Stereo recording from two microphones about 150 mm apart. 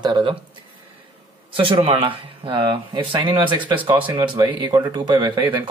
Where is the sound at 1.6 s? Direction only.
35° right (ahead or behind).